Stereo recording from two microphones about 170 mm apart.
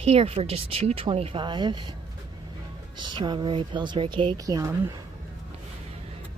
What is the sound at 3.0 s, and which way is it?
Speech, 25° right (ahead or behind).